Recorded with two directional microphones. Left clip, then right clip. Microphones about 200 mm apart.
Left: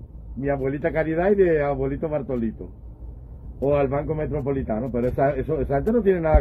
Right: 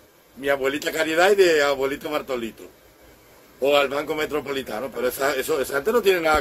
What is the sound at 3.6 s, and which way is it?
Speech, 20° right (ahead or behind).